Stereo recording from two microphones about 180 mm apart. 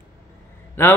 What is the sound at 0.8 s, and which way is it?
Speech, 15° left (ahead or behind).